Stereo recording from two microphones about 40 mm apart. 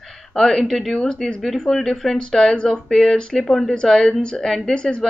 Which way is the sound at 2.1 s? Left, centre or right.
Centre.